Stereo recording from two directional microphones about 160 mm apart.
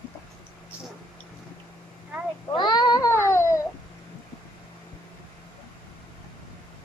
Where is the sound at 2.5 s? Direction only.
25° left (ahead or behind).